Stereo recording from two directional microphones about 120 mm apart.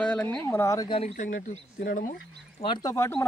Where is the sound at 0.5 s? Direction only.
25° left (ahead or behind).